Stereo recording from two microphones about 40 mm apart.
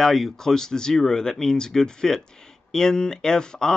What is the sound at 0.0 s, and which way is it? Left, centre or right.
Speech, centre.